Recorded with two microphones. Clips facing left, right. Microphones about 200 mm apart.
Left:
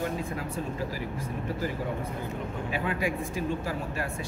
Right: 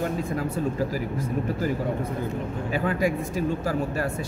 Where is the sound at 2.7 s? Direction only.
40° right (ahead or behind).